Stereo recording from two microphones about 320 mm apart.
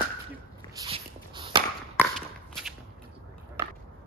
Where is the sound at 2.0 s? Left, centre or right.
Centre.